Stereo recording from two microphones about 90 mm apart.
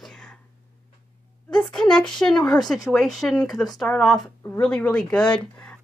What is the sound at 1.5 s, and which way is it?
Speech, 5° left (ahead or behind).